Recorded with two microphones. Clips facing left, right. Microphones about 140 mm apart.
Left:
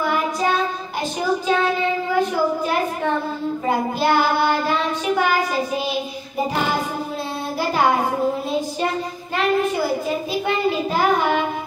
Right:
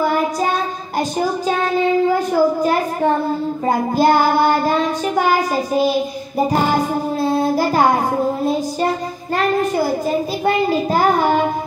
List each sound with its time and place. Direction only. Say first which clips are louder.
0.0 s child singing: right 4 dB; 40° right (ahead or behind)
2.1 s child singing: right 4 dB; 40° right (ahead or behind)
10.0 s child singing: right 4 dB; 40° right (ahead or behind)